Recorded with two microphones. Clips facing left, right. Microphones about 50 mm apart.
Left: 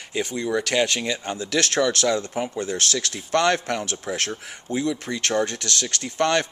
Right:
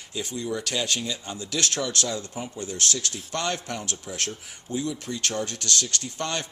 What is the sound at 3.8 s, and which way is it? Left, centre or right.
A man's voice, left.